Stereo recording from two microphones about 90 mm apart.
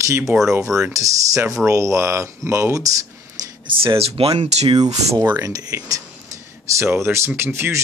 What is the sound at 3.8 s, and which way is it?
Speech, 90° right.